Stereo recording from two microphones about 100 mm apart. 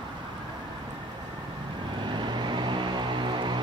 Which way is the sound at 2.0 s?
50° right (ahead or behind).